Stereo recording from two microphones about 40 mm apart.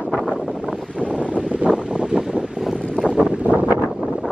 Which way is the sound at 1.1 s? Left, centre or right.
Right.